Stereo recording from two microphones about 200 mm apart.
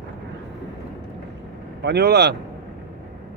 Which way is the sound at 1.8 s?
55° right (ahead or behind).